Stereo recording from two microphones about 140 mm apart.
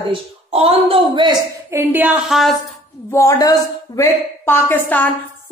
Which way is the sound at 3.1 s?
20° left (ahead or behind).